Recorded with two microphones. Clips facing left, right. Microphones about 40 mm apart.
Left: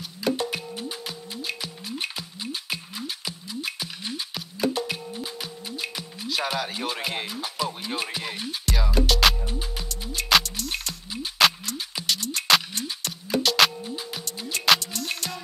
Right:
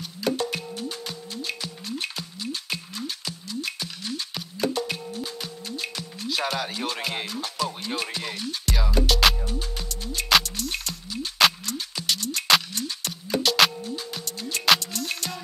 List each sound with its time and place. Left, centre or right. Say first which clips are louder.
0.0 s music: even; centre
9.5 s music: right 1 dB; centre
10.1 s music: even; centre
13.8 s music: right 1 dB; centre
14.2 s music: even; centre